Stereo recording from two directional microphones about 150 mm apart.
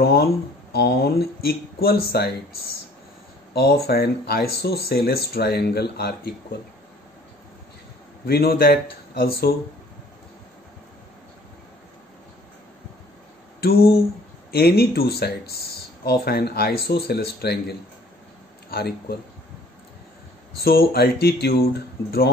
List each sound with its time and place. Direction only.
0.0 s speech: 90° left
3.5 s speech: 90° left
8.3 s speech: 90° left
13.6 s a sound: 90° left
14.5 s speech: 90° left
20.5 s speech: 90° left